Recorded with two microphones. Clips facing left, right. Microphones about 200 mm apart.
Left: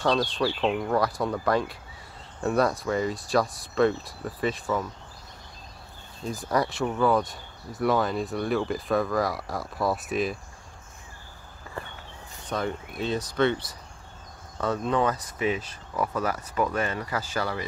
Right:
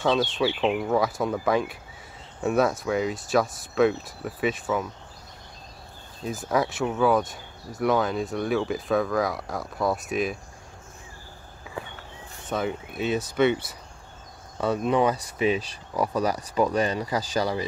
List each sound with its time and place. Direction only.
0.0 s speech: centre (ahead or behind)
6.2 s speech: centre (ahead or behind)
12.4 s speech: 5° right (ahead or behind)